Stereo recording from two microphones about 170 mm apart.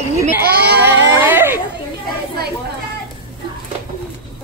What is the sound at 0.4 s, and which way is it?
Child singing, 70° right (ahead or behind).